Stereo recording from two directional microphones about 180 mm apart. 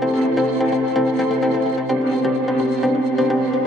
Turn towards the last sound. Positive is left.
turn(degrees=0)  # may be behind; listen again after turning